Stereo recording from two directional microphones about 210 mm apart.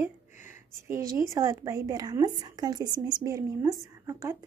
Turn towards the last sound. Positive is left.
turn(degrees=-15)  # may be behind; listen again after turning